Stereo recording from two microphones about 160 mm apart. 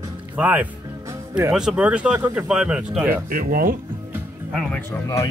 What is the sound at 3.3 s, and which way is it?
Speech, 65° right (ahead or behind).